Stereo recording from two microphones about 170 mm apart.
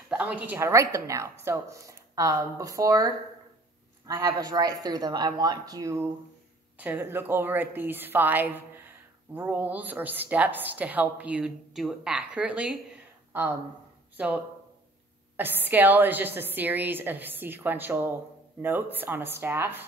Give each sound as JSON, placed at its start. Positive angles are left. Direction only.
{"t": 0.1, "sound": "a woman's voice", "side_deg": -5}